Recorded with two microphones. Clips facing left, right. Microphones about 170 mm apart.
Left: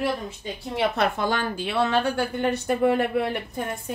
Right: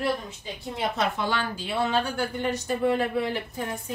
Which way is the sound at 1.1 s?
50° left (ahead or behind).